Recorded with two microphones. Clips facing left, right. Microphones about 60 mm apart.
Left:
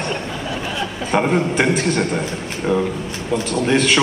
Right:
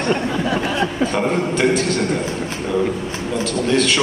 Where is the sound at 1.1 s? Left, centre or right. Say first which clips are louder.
Left 2 dB; left.